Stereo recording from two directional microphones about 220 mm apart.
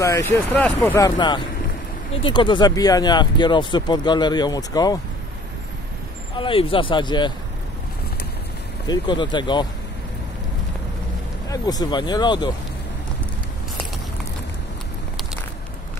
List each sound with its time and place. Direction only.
0.0 s speech: 15° left (ahead or behind)
6.4 s speech: 25° left (ahead or behind)
8.8 s speech: 20° left (ahead or behind)
11.4 s speech: 15° left (ahead or behind)